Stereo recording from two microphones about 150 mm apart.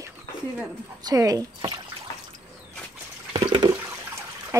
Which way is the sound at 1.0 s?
25° right (ahead or behind).